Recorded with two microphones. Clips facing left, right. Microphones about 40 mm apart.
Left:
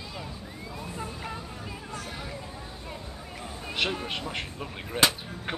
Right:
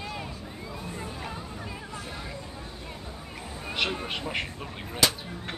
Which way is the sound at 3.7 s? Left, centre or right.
Centre.